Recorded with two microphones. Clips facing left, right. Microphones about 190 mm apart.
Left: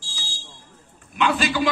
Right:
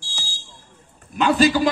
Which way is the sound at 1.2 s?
40° right (ahead or behind).